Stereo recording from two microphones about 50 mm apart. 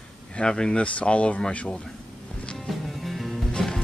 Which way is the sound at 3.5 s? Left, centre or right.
Centre.